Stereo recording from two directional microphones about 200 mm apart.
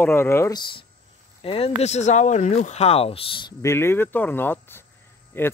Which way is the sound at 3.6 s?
15° left (ahead or behind).